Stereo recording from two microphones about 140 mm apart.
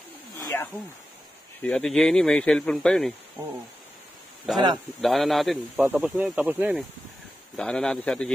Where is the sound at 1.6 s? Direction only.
10° left (ahead or behind).